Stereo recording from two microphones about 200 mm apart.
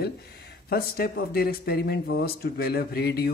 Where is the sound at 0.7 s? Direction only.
50° left (ahead or behind).